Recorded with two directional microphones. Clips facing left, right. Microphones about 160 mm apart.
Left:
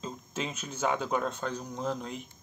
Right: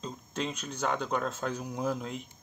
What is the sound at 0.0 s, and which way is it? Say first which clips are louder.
Speech: right 1 dB; 5° left (ahead or behind).